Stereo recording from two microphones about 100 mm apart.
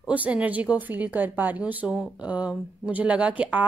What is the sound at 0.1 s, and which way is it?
A woman's voice, 15° right (ahead or behind).